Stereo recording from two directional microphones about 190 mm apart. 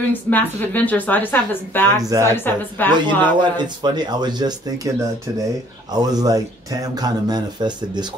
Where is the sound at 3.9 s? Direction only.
20° right (ahead or behind).